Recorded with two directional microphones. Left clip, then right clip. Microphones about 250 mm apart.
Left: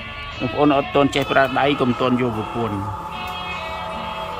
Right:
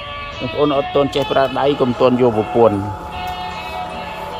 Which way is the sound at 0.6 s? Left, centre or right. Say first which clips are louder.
Right 1 dB; centre.